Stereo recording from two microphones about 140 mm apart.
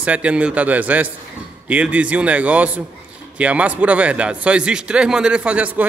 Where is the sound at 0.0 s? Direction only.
10° right (ahead or behind).